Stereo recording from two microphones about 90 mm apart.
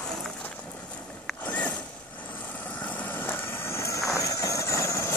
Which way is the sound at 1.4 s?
15° left (ahead or behind).